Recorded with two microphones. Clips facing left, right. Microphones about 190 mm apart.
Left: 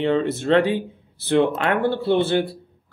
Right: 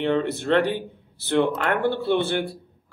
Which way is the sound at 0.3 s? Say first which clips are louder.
Left 3 dB; 20° left (ahead or behind).